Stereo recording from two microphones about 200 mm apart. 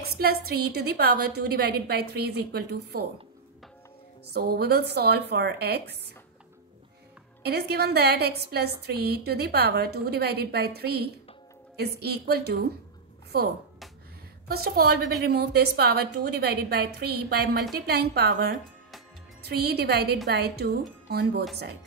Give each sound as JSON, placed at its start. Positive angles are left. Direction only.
{"t": 0.2, "sound": "a woman's voice", "side_deg": -50}
{"t": 4.3, "sound": "a woman's voice", "side_deg": -50}
{"t": 7.4, "sound": "a woman's voice", "side_deg": -55}